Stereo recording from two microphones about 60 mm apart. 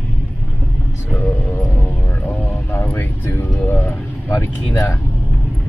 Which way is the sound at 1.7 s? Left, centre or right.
Left.